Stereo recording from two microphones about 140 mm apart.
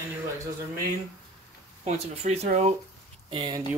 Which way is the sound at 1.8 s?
50° right (ahead or behind).